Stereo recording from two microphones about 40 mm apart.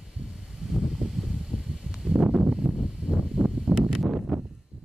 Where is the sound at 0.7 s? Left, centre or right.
Centre.